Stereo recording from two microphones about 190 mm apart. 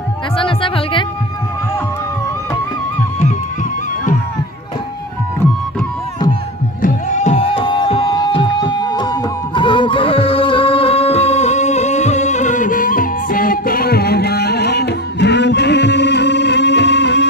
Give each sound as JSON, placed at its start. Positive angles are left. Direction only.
{"t": 0.4, "sound": "music", "side_deg": 25}
{"t": 6.8, "sound": "music", "side_deg": 40}